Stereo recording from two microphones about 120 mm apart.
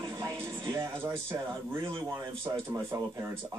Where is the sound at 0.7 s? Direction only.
20° right (ahead or behind).